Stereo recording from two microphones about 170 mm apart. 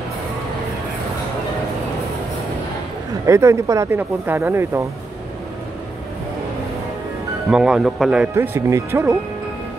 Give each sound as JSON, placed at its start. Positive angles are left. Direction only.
{"t": 3.3, "sound": "speech", "side_deg": -15}
{"t": 7.5, "sound": "speech", "side_deg": -5}